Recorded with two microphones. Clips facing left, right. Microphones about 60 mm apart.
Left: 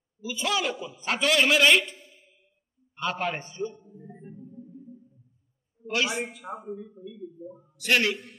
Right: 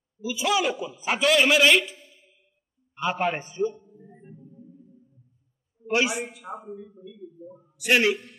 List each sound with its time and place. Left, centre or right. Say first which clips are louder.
0.2 s a man's voice: right 4 dB; centre
1.2 s a man's voice: right 2 dB; centre
3.0 s a man's voice: right 4 dB; centre
3.7 s music: even; centre
5.9 s a man's voice: right 4 dB; right
6.6 s speech: left 2 dB; centre
7.5 s a man's voice: right 3 dB; centre